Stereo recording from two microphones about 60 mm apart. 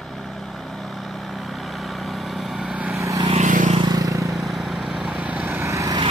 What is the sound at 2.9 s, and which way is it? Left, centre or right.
Vehicle, right.